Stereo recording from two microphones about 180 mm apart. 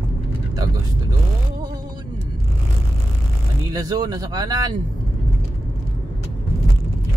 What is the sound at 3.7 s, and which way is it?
Speech, 20° right (ahead or behind).